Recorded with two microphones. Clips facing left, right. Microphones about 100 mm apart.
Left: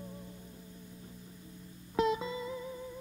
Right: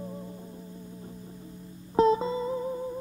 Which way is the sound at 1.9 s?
35° right (ahead or behind).